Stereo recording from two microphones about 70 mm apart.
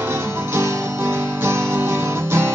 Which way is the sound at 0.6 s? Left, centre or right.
Right.